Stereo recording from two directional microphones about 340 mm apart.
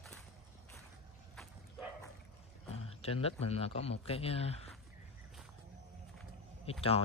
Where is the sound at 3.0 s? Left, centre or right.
Centre.